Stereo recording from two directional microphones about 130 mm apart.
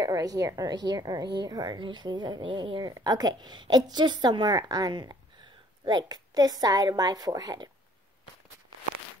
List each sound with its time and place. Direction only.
0.0 s a woman's voice: 30° right (ahead or behind)